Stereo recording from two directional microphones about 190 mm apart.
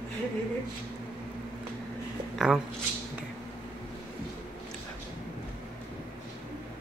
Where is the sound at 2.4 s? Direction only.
Centre (ahead or behind).